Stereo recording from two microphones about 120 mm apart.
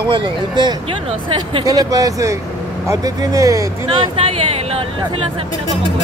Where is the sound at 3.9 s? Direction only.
50° right (ahead or behind).